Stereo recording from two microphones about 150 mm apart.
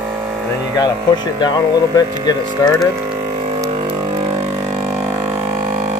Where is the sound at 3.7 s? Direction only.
30° right (ahead or behind).